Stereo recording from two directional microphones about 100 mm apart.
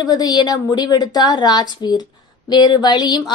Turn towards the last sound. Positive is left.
turn(degrees=45)  # may be behind; listen again after turning